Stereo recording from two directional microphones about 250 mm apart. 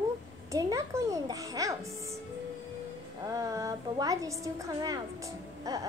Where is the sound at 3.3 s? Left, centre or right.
Centre.